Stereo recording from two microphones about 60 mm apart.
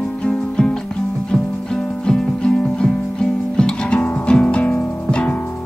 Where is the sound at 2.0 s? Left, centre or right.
Centre.